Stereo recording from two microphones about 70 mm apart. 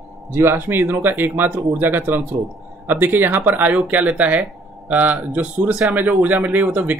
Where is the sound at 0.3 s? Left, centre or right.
Right.